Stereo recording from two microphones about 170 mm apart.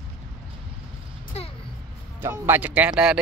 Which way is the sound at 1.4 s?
40° left (ahead or behind).